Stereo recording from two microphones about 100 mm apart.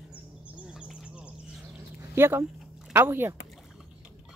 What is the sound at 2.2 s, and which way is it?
Speech, 25° right (ahead or behind).